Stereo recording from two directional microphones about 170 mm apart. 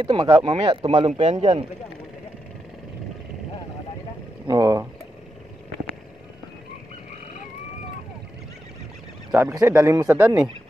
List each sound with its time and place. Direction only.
0.0 s speech: 30° right (ahead or behind)
4.5 s speech: 20° right (ahead or behind)
9.3 s speech: 15° right (ahead or behind)